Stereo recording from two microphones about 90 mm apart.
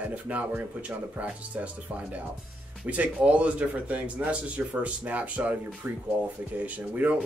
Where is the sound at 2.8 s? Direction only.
15° right (ahead or behind).